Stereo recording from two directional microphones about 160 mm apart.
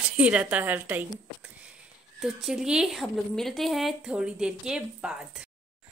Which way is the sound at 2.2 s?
5° right (ahead or behind).